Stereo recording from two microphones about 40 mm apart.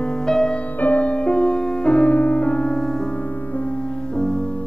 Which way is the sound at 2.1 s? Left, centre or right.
Left.